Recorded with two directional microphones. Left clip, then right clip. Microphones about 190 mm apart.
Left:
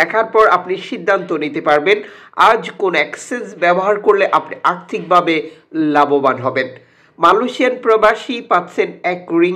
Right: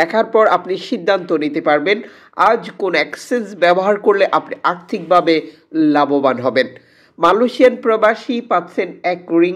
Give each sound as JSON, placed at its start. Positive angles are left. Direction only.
{"t": 0.0, "sound": "speech", "side_deg": -50}
{"t": 1.1, "sound": "a man's voice", "side_deg": -40}